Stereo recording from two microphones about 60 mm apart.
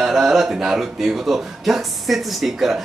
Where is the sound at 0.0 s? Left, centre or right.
Centre.